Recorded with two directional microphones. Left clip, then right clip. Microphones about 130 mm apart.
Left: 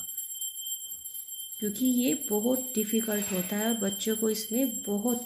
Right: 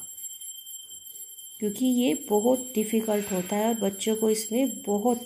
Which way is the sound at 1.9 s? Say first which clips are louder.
Right 4 dB; 15° right (ahead or behind).